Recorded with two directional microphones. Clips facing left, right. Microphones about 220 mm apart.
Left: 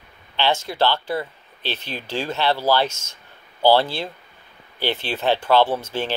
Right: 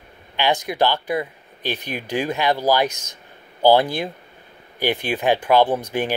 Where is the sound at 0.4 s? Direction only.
15° right (ahead or behind).